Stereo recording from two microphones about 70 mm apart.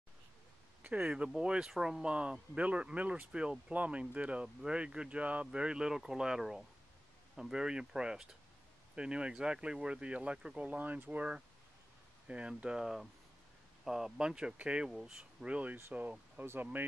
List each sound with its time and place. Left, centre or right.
0.8 s speech: right
1.1 s speech: centre
14.9 s speech: centre
15.1 s speech: centre